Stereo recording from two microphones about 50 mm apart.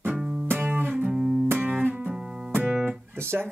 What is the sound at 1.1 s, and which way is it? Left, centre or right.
Music, centre.